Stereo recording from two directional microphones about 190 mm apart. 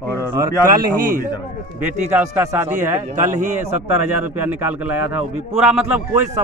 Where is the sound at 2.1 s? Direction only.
15° right (ahead or behind).